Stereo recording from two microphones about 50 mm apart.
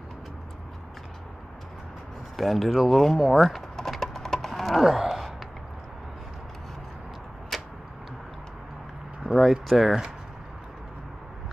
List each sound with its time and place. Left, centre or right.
2.3 s speech: centre
3.3 s a sound: centre
7.5 s tick-tock: centre
9.3 s speech: centre